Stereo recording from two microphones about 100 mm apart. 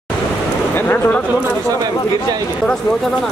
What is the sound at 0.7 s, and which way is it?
Speech, 20° left (ahead or behind).